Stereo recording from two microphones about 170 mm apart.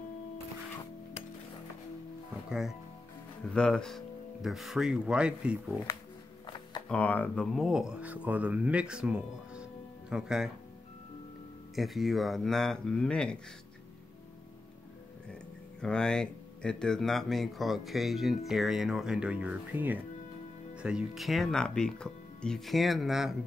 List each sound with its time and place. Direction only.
3.5 s speech: 5° left (ahead or behind)
6.4 s a sound: 25° left (ahead or behind)
6.9 s speech: 10° left (ahead or behind)
11.7 s speech: centre (ahead or behind)
15.8 s speech: 5° left (ahead or behind)